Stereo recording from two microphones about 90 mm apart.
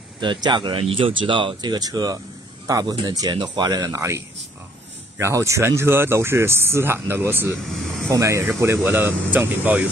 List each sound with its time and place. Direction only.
0.2 s speech: 60° right (ahead or behind); by 7.5 s 25° right (ahead or behind)
8.1 s speech: 35° right (ahead or behind)